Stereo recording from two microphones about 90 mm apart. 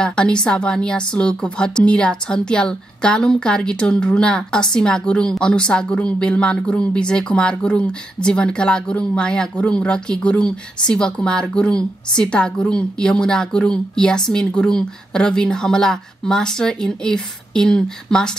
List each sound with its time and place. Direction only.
0.0 s speech: 10° left (ahead or behind)